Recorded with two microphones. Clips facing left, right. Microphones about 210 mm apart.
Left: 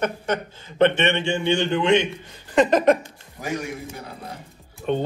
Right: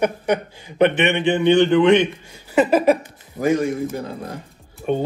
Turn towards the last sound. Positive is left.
turn(degrees=-10)  # may be behind; listen again after turning